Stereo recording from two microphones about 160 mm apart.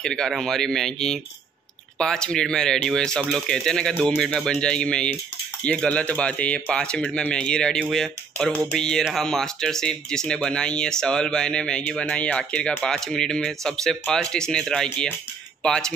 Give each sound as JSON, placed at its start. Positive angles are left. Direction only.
{"t": 0.0, "sound": "speech", "side_deg": 5}